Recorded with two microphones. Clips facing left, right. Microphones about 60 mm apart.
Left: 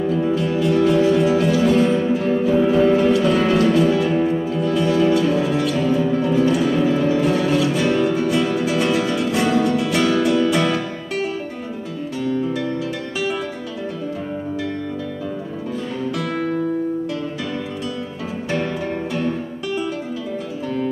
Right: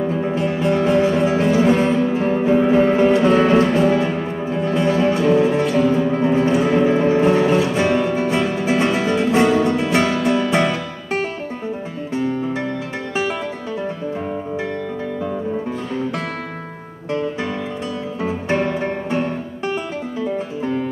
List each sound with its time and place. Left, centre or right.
0.0 s music: right
12.2 s music: right
18.5 s music: right